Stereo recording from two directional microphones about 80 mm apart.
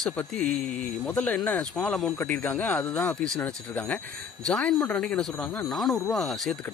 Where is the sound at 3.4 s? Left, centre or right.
Left.